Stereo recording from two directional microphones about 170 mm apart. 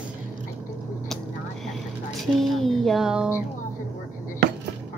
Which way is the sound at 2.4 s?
Centre (ahead or behind).